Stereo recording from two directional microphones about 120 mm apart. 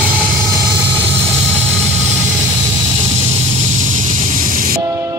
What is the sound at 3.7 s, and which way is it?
Vehicle, 90° right.